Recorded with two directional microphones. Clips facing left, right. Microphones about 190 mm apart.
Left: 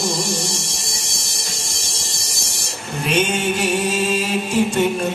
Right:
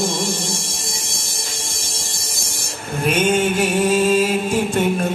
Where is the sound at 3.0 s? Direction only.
50° right (ahead or behind).